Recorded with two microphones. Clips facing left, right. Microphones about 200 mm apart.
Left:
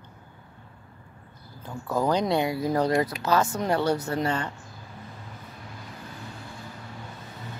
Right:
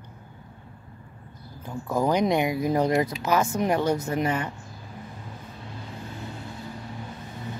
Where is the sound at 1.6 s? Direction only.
10° right (ahead or behind).